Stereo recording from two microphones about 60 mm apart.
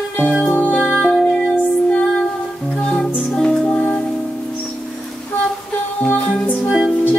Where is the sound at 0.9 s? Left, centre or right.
Centre.